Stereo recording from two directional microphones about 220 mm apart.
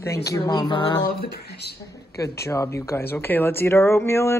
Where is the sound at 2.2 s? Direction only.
10° left (ahead or behind).